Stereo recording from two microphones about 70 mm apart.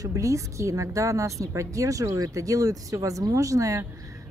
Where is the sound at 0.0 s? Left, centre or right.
Right.